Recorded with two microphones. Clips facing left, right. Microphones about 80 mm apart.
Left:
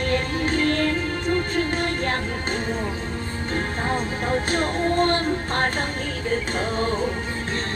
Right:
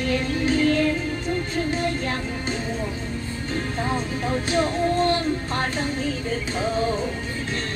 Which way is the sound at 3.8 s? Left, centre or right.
Left.